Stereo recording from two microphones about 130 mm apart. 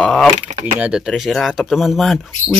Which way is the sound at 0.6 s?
10° right (ahead or behind).